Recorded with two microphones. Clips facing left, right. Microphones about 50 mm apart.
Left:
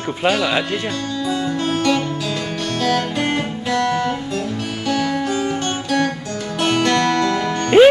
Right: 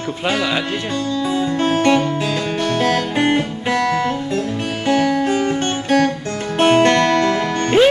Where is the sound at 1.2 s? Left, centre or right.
Right.